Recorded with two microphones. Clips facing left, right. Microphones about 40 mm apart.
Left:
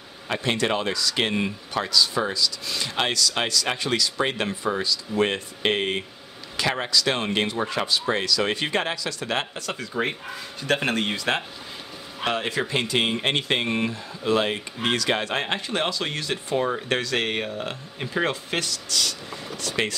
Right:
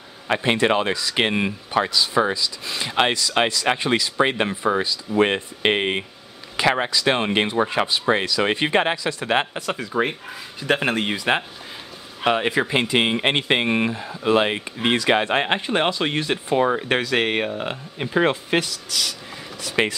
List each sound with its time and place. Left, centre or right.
0.4 s speech: right
19.7 s speech: right